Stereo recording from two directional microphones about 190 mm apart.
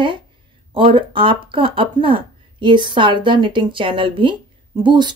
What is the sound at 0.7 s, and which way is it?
Speech, 25° right (ahead or behind).